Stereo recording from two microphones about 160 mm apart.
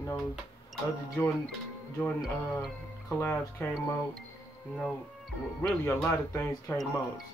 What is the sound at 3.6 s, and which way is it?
Speech, 10° left (ahead or behind).